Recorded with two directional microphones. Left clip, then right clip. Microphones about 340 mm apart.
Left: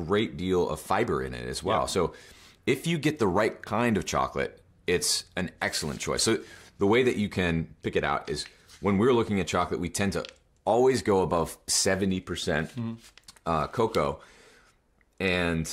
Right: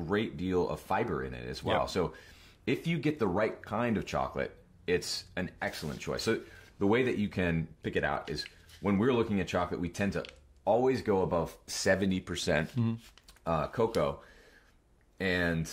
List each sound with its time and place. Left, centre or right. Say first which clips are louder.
0.0 s speech: left 5 dB; centre
15.1 s speech: left 4 dB; left